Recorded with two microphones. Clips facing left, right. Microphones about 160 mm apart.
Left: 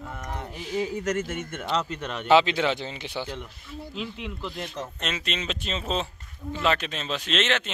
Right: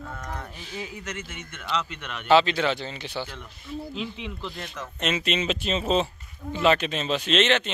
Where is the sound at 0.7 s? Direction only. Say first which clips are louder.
Left 9 dB; 35° left (ahead or behind).